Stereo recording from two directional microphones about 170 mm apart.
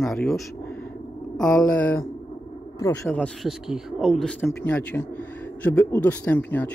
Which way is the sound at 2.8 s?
10° left (ahead or behind).